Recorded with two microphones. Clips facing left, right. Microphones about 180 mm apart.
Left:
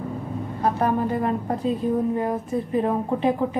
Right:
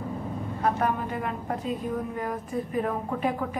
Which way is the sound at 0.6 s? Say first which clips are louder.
Left 4 dB; 35° left (ahead or behind).